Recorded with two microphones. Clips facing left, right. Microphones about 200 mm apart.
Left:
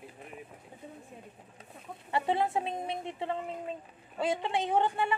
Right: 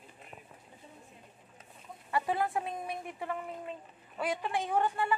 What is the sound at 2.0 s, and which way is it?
A woman's voice, 25° left (ahead or behind).